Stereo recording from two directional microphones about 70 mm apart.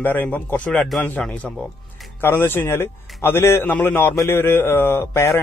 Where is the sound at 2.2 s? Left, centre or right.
Left.